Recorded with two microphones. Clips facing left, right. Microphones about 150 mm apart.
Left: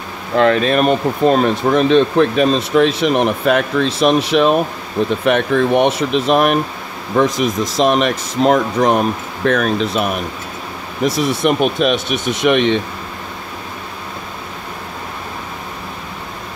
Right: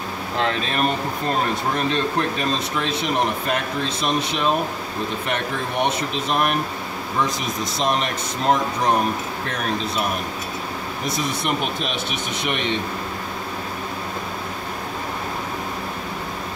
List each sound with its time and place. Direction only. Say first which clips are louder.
0.4 s speech: left 10 dB; 60° left (ahead or behind); by 10.0 s 80° left
11.1 s speech: left 9 dB; 80° left